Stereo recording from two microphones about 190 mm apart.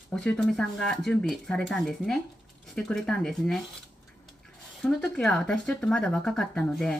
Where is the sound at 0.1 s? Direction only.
5° left (ahead or behind).